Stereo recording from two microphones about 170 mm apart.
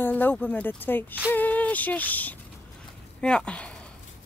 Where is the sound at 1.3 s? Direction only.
10° left (ahead or behind).